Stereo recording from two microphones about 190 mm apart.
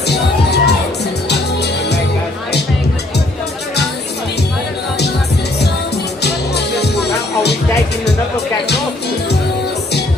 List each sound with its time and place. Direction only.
0.0 s music: 60° left (ahead or behind)
6.2 s music: 60° left (ahead or behind)